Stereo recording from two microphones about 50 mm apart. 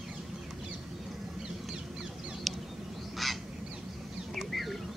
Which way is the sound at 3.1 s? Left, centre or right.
Centre.